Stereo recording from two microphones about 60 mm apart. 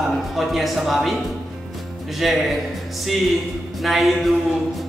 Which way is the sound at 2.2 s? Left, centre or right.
Centre.